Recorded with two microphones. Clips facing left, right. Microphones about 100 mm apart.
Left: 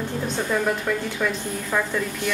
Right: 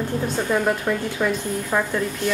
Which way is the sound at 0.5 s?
15° right (ahead or behind).